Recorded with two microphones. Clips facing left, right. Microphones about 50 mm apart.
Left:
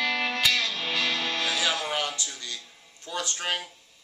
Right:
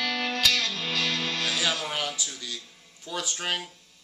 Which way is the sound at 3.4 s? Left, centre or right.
Centre.